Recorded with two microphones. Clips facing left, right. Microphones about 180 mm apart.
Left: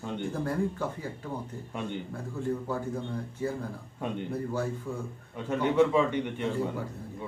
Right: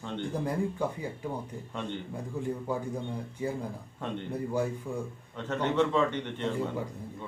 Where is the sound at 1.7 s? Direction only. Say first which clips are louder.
Left 1 dB; 10° left (ahead or behind).